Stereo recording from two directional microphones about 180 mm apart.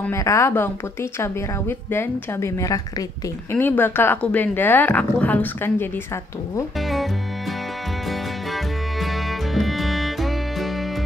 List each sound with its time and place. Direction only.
0.0 s a woman's voice: 15° left (ahead or behind)
9.0 s music: centre (ahead or behind)